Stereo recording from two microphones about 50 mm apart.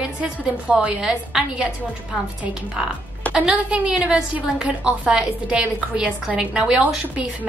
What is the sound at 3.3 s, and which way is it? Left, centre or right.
A woman's voice, right.